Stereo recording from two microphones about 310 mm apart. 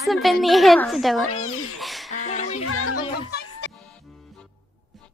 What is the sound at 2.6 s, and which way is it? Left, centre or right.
Music, left.